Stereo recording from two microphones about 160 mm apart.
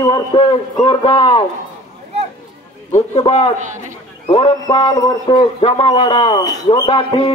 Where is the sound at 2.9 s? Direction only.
35° left (ahead or behind).